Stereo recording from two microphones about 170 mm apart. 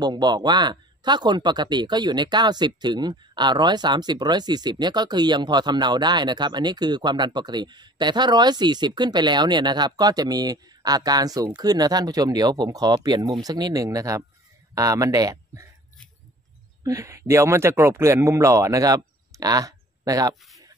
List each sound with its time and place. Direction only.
0.0 s speech: 25° right (ahead or behind)
16.8 s speech: 15° right (ahead or behind)